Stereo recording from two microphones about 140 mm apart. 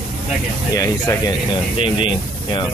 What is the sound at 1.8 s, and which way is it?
Speech, 35° left (ahead or behind).